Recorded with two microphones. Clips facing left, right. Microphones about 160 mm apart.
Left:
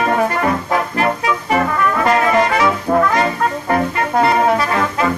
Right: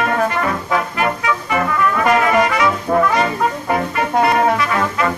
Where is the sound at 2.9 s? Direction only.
Centre (ahead or behind).